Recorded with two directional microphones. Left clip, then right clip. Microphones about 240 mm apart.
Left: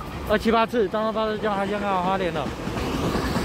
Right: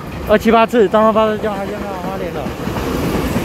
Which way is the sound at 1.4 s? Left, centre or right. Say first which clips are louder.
Right 3 dB; centre.